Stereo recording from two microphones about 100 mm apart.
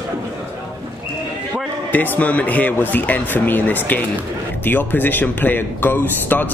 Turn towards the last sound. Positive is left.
turn(degrees=20)  # may be behind; listen again after turning